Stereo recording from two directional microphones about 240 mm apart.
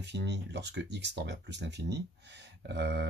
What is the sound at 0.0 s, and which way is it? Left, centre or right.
Speech, right.